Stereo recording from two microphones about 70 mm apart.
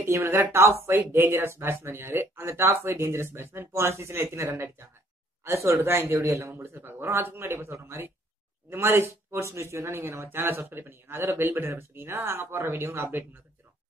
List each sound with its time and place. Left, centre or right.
0.2 s speech: right